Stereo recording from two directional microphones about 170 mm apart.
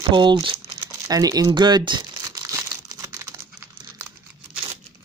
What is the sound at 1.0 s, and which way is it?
Crumpling, 20° right (ahead or behind).